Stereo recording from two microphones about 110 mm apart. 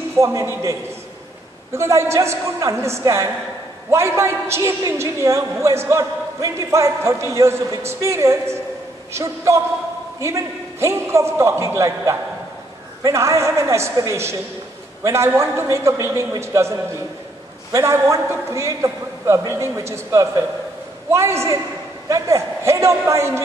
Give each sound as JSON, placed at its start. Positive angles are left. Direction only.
{"t": 0.2, "sound": "a woman's voice", "side_deg": -30}